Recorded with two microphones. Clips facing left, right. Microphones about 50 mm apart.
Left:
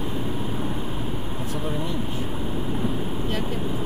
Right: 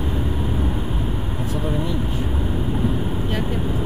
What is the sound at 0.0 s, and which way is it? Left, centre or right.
Vehicle, centre.